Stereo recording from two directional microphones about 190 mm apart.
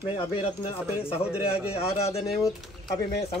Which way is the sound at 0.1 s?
30° left (ahead or behind).